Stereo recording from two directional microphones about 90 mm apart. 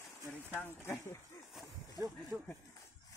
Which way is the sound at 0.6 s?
25° left (ahead or behind).